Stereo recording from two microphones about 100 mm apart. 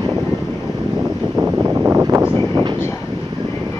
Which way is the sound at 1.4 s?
20° right (ahead or behind).